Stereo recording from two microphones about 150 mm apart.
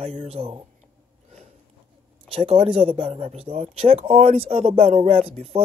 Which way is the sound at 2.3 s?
40° right (ahead or behind).